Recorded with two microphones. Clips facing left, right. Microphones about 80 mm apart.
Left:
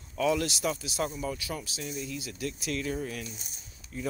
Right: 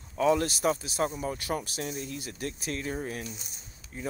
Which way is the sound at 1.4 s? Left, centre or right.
Right.